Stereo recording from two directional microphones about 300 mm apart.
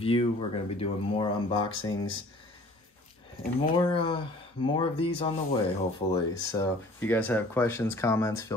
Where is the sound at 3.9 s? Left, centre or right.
Centre.